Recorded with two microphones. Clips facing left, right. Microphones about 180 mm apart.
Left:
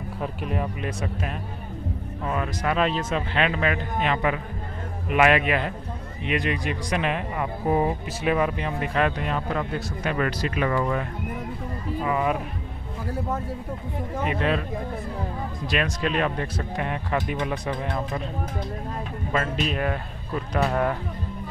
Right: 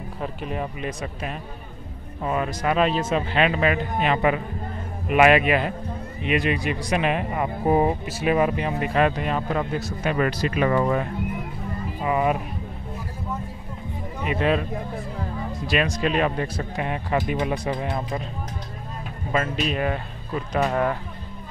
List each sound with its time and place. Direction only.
0.2 s speech: centre (ahead or behind)
2.3 s speech: 10° right (ahead or behind)
12.0 s speech: 15° right (ahead or behind)
15.7 s speech: 5° right (ahead or behind)
19.3 s speech: 5° right (ahead or behind)